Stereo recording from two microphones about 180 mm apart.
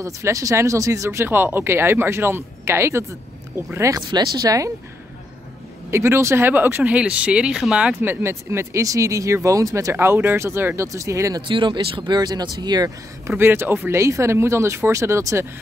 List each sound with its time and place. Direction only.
0.0 s speech: 20° right (ahead or behind)
5.9 s speech: 15° right (ahead or behind)
13.3 s speech: 10° right (ahead or behind)